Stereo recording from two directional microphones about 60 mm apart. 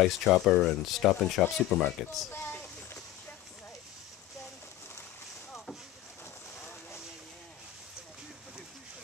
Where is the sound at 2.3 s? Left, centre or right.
Left.